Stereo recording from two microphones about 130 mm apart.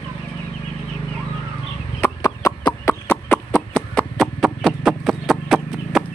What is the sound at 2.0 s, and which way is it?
Chicken, 20° left (ahead or behind).